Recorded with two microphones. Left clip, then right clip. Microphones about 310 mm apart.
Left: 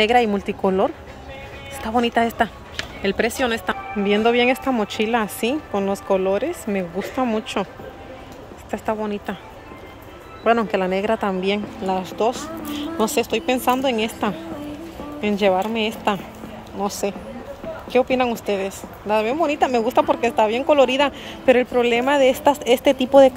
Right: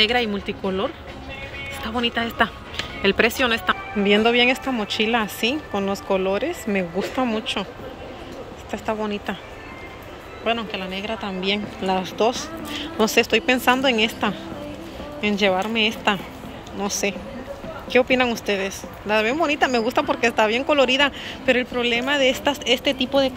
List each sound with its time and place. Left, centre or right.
0.0 s speech: centre
8.7 s speech: centre
10.4 s a woman's voice: centre
17.9 s speech: centre